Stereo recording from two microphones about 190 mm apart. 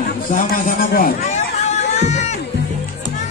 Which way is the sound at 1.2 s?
35° left (ahead or behind).